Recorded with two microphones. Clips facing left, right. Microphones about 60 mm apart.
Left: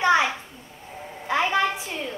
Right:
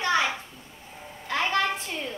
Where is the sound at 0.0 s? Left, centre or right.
Left.